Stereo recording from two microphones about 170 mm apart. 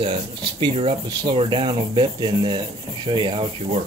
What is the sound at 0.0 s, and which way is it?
Speech, 30° right (ahead or behind).